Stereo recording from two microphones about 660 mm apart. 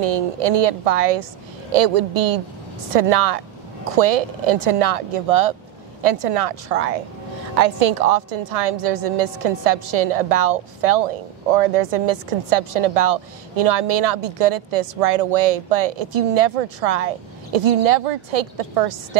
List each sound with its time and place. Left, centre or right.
0.0 s a woman's voice: right